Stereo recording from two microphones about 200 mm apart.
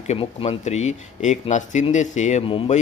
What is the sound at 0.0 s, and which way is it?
Speech, 30° left (ahead or behind).